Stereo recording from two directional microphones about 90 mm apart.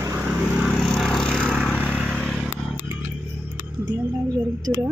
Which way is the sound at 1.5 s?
10° right (ahead or behind).